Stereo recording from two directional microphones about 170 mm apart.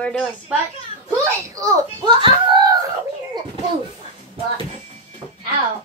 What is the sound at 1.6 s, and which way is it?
A child's voice, 25° right (ahead or behind).